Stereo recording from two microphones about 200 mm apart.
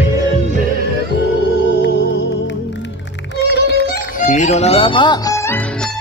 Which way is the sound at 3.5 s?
50° left (ahead or behind).